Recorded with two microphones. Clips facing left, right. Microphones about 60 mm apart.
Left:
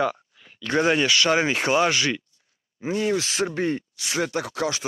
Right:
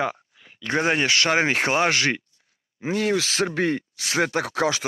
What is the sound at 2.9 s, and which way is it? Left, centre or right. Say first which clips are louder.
Speech: right 1 dB; right.